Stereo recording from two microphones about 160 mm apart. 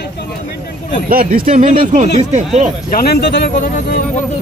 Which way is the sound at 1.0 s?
65° right (ahead or behind).